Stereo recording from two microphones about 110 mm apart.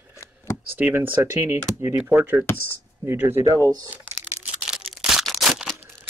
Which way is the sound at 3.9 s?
10° right (ahead or behind).